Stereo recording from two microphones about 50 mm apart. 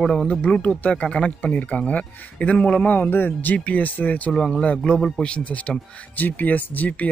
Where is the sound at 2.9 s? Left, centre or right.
Left.